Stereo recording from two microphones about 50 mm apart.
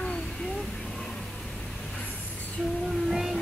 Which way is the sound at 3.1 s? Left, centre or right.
Centre.